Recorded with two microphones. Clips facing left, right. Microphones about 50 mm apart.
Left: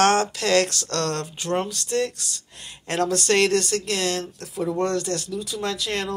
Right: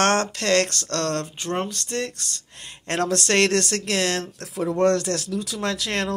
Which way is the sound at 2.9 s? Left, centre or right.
Right.